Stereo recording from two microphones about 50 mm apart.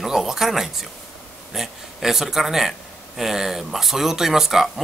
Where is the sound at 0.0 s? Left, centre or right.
Centre.